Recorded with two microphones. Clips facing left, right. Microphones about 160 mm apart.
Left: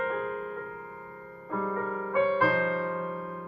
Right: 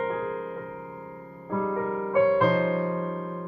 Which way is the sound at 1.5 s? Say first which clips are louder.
Right 4 dB; 15° right (ahead or behind).